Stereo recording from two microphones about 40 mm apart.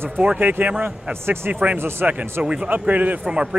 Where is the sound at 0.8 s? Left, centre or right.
Right.